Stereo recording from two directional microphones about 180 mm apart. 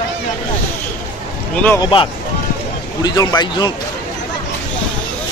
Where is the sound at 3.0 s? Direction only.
20° left (ahead or behind).